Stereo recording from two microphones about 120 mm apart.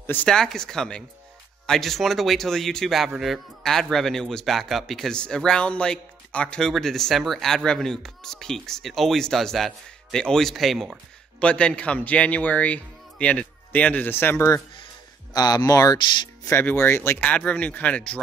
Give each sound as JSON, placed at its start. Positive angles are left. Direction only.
{"t": 0.0, "sound": "a man's voice", "side_deg": 15}
{"t": 15.3, "sound": "speech", "side_deg": 35}
{"t": 16.4, "sound": "a man's voice", "side_deg": 20}